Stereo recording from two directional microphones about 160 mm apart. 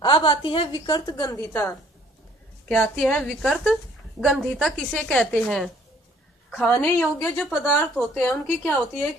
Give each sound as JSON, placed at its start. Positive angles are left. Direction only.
{"t": 0.0, "sound": "a woman's voice", "side_deg": 30}